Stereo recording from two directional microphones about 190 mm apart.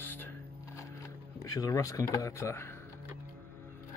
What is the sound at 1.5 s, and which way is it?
Speech, 20° left (ahead or behind).